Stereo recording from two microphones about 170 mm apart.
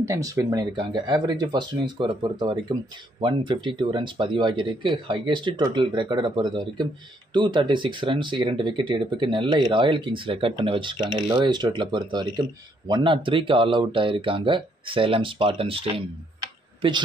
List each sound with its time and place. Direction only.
0.0 s speech: 20° right (ahead or behind)